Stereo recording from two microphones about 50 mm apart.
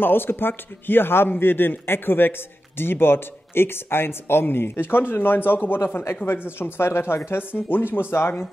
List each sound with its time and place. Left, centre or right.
0.0 s a man's voice: left